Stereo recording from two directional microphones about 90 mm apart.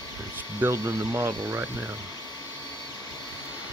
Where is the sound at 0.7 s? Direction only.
35° right (ahead or behind).